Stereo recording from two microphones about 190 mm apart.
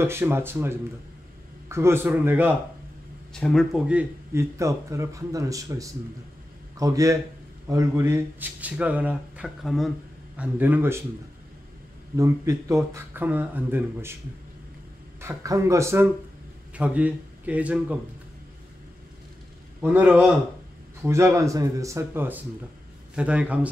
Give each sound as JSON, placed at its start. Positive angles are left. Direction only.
{"t": 0.0, "sound": "speech", "side_deg": -10}
{"t": 3.3, "sound": "speech", "side_deg": 5}
{"t": 12.2, "sound": "speech", "side_deg": -15}
{"t": 15.1, "sound": "a man's voice", "side_deg": -15}
{"t": 19.8, "sound": "speech", "side_deg": -10}